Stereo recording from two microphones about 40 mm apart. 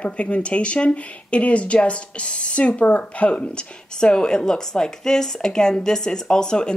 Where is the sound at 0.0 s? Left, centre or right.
Left.